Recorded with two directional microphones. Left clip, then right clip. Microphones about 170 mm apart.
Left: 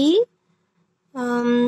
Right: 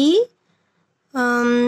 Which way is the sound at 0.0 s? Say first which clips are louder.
Right 1 dB; 50° right (ahead or behind).